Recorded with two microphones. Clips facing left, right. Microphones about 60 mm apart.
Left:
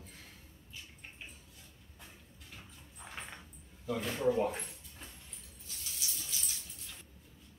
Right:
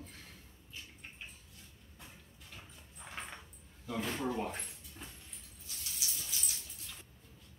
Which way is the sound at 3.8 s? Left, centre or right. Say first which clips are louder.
Left 5 dB; centre.